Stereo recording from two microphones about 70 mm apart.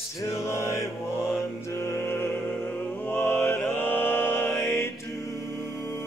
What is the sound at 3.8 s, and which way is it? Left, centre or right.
Music, left.